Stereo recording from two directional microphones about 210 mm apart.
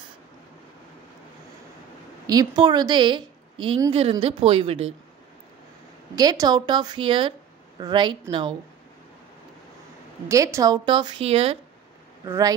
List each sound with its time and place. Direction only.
2.2 s a woman's voice: 20° right (ahead or behind)
6.1 s a woman's voice: 20° right (ahead or behind)
10.2 s a woman's voice: 15° right (ahead or behind)
12.3 s speech: 15° right (ahead or behind)